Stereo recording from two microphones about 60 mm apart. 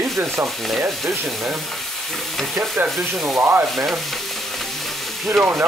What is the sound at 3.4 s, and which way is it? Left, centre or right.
Sanding, right.